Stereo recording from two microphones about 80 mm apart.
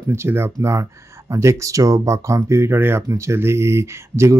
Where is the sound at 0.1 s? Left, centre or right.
Right.